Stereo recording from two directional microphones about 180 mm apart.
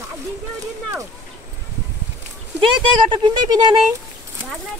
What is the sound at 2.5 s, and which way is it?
Speech, 25° right (ahead or behind).